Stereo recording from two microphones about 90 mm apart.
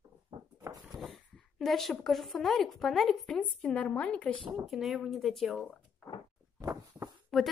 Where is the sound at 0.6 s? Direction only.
40° right (ahead or behind).